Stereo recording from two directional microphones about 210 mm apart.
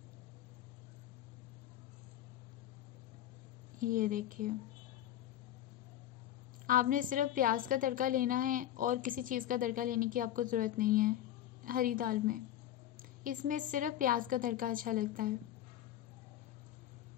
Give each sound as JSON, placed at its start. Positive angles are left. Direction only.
{"t": 3.8, "sound": "a woman's voice", "side_deg": -40}
{"t": 6.6, "sound": "a woman's voice", "side_deg": -40}